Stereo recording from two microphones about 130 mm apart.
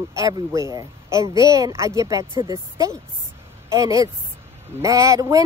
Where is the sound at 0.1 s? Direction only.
25° right (ahead or behind).